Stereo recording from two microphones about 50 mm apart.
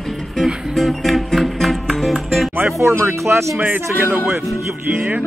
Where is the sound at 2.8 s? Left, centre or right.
Right.